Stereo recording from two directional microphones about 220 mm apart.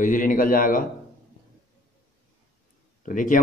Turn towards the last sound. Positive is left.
turn(degrees=35)  # may be behind; listen again after turning